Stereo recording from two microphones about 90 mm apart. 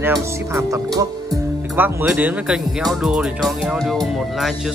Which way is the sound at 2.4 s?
5° right (ahead or behind).